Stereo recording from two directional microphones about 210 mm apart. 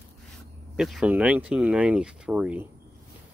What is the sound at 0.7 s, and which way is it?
Speech, centre (ahead or behind).